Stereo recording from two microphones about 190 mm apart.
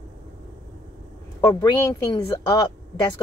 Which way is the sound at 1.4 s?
15° left (ahead or behind).